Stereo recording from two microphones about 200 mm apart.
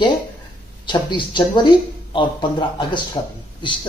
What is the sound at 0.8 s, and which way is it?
A woman's voice, 20° left (ahead or behind).